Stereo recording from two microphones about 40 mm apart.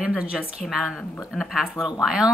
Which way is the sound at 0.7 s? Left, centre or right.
Centre.